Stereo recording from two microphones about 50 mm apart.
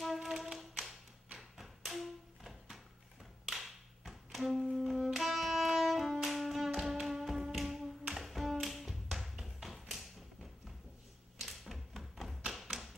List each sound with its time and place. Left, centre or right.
0.0 s music: centre
1.3 s a sound: centre
3.4 s music: centre
6.2 s tap: centre
11.4 s tap: centre